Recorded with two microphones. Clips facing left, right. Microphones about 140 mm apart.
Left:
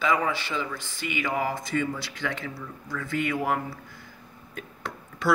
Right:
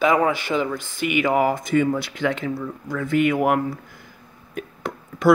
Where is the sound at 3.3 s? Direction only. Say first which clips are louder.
Right 7 dB; 65° right (ahead or behind).